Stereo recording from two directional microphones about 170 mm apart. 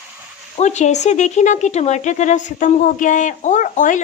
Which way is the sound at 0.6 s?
40° left (ahead or behind).